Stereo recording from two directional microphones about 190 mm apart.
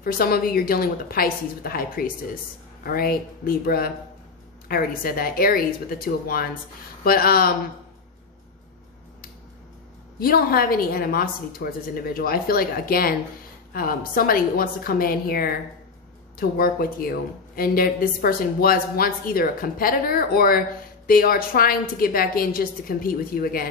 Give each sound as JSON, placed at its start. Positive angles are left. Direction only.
{"t": 0.0, "sound": "a woman's voice", "side_deg": 50}
{"t": 10.1, "sound": "a woman's voice", "side_deg": 50}